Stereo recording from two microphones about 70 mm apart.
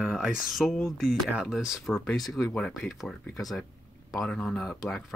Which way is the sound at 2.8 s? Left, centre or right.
Centre.